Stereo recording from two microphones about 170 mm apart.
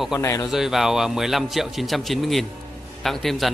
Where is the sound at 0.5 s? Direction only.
Centre (ahead or behind).